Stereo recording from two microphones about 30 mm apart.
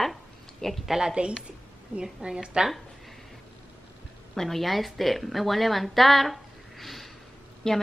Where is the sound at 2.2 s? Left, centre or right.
Right.